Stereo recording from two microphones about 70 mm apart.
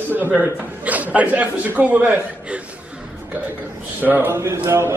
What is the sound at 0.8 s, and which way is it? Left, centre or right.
A man's voice, right.